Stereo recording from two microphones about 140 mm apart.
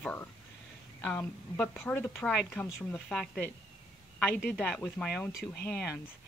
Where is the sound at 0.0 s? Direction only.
10° left (ahead or behind).